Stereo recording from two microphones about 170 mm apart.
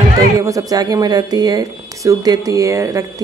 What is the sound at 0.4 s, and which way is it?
A woman's voice, 20° right (ahead or behind).